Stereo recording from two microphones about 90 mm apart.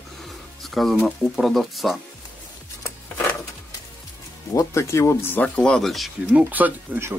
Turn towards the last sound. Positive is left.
turn(degrees=-25)  # may be behind; listen again after turning